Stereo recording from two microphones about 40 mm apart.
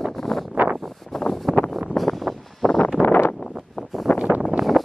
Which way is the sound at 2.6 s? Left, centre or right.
Centre.